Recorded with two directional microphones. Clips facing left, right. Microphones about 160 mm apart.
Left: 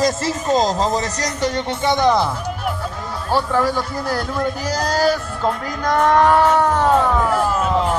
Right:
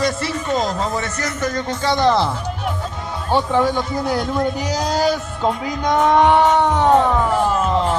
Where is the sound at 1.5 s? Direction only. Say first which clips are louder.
Even; 25° left (ahead or behind); by 4.0 s 5° left (ahead or behind).